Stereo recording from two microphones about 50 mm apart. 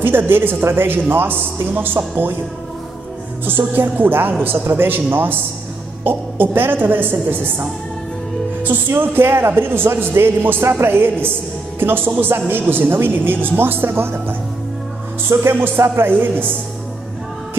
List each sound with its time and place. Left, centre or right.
0.0 s a man's voice: right
3.4 s a man's voice: right